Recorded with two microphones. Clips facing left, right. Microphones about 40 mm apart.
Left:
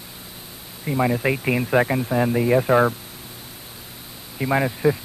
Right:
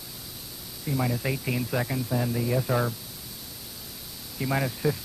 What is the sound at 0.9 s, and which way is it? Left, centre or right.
Speech, left.